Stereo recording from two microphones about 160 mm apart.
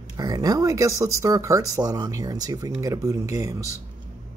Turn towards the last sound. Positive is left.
turn(degrees=-20)  # may be behind; listen again after turning